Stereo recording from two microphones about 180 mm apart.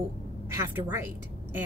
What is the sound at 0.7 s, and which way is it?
Speech, 10° right (ahead or behind).